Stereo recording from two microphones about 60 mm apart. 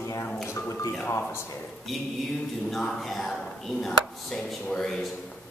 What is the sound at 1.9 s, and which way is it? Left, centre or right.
A man's voice, centre.